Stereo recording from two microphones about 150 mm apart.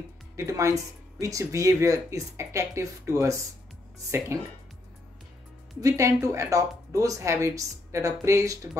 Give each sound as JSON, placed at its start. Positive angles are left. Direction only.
{"t": 0.4, "sound": "speech", "side_deg": -20}
{"t": 5.8, "sound": "speech", "side_deg": -20}